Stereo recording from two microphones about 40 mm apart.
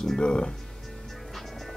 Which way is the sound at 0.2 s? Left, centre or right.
Left.